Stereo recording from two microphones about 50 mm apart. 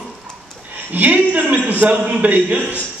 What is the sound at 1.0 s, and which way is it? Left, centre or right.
Speech, right.